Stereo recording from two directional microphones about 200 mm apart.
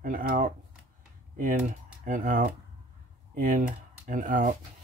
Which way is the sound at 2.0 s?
45° right (ahead or behind).